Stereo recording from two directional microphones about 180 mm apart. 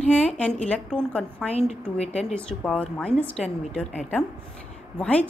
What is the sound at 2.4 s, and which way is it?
A woman's voice, 5° left (ahead or behind).